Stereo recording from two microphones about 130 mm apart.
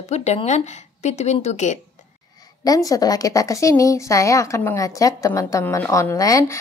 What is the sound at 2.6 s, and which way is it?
A woman's voice, 25° left (ahead or behind).